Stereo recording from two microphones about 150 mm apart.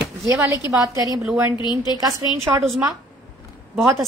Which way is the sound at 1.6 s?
30° left (ahead or behind).